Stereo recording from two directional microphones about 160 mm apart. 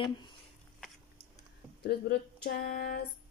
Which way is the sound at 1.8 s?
90° left.